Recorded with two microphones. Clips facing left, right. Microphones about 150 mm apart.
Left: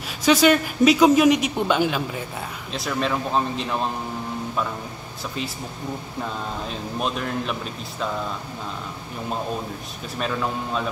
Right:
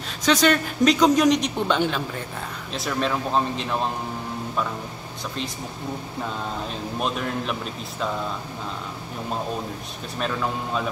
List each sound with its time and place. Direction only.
0.2 s speech: 10° left (ahead or behind)
6.7 s speech: centre (ahead or behind)
10.1 s speech: centre (ahead or behind)